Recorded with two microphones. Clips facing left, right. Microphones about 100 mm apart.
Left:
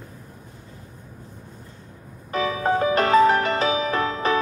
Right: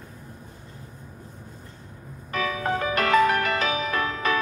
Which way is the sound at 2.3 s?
30° left (ahead or behind).